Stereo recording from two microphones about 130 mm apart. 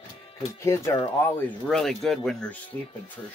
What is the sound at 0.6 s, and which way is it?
Speech, 20° left (ahead or behind).